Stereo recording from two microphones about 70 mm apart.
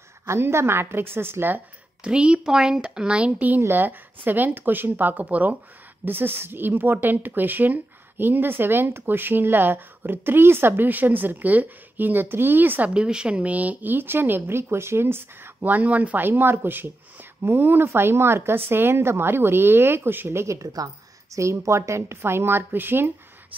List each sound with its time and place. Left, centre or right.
0.3 s speech: right
2.0 s speech: centre
12.9 s speech: centre; by 20.4 s right
20.4 s speech: right